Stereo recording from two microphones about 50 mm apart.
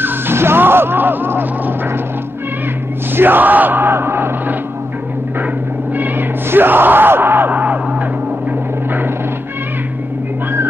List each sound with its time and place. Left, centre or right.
0.0 s skidding: right
3.2 s yell: right
5.9 s music: right